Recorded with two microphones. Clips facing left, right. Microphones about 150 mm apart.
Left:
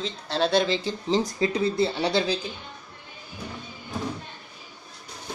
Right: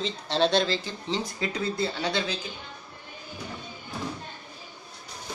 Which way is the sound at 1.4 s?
30° left (ahead or behind).